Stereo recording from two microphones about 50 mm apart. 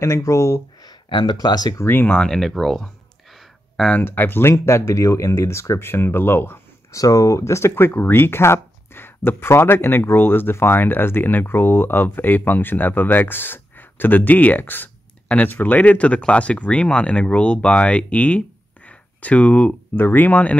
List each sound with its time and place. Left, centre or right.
0.0 s speech: left
1.8 s speech: left
2.1 s speech: centre
3.3 s a sound: centre
4.0 s speech: left
5.9 s speech: left
6.9 s speech: left
7.7 s speech: left
15.2 s speech: left
18.9 s a sound: left
20.0 s speech: left